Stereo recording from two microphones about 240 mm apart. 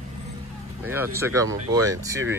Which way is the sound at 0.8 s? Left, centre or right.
Centre.